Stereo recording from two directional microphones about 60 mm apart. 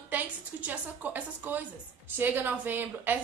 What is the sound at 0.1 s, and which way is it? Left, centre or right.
A woman's voice, right.